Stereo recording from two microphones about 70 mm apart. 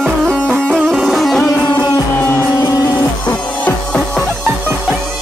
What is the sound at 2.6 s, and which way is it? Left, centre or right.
Music, left.